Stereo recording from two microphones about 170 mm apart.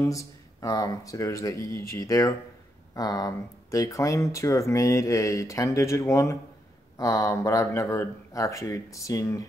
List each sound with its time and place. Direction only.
0.0 s speech: 20° left (ahead or behind)